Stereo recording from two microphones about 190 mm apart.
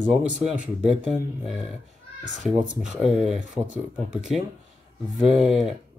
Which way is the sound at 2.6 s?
45° right (ahead or behind).